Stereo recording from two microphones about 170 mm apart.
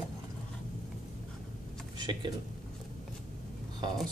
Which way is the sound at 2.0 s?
25° right (ahead or behind).